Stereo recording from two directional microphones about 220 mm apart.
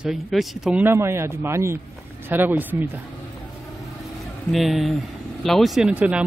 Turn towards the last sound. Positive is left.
turn(degrees=-5)  # may be behind; listen again after turning